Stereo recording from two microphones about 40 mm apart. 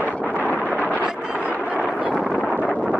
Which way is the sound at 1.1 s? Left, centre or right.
Right.